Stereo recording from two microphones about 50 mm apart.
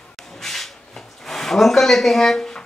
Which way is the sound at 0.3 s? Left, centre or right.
Centre.